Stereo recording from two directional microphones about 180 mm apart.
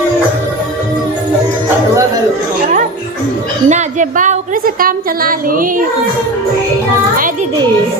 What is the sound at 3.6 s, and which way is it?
A woman's voice, 40° right (ahead or behind).